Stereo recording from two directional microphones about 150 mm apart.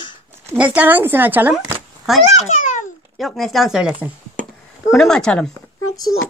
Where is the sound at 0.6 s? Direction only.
10° right (ahead or behind).